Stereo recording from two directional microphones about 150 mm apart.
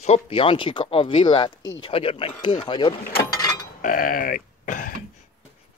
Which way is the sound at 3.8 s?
65° left (ahead or behind).